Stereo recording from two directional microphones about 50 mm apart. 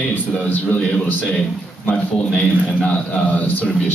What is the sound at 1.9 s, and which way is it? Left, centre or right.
A man's voice, centre.